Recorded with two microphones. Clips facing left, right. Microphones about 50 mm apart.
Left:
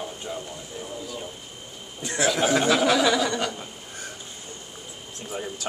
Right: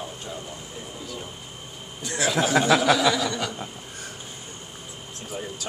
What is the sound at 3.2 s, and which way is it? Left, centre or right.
Speech, left.